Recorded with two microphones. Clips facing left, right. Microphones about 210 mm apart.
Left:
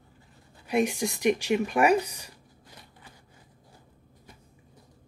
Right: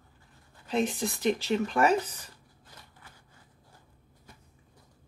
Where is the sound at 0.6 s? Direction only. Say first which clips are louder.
Left 3 dB; 15° left (ahead or behind).